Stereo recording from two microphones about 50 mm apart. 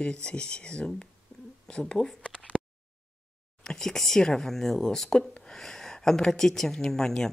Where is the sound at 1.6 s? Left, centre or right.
Centre.